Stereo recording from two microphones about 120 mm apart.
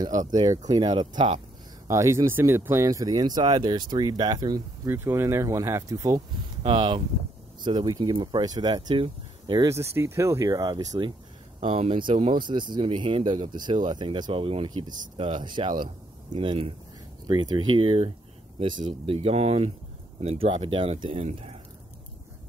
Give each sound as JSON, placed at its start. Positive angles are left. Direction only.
{"t": 0.3, "sound": "speech", "side_deg": -35}
{"t": 1.9, "sound": "speech", "side_deg": -25}
{"t": 4.8, "sound": "speech", "side_deg": -20}
{"t": 6.6, "sound": "speech", "side_deg": -40}
{"t": 9.7, "sound": "speech", "side_deg": -20}
{"t": 11.6, "sound": "speech", "side_deg": -55}
{"t": 17.8, "sound": "speech", "side_deg": -55}